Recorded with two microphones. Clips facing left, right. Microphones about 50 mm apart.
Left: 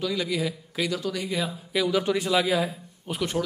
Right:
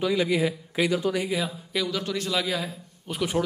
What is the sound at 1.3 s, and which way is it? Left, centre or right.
Speech, centre.